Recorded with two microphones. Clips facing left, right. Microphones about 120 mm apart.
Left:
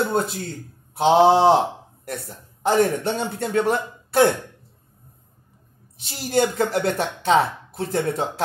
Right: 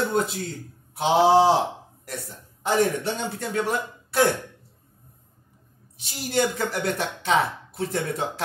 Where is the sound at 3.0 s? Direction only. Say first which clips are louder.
Left 4 dB; 55° left (ahead or behind).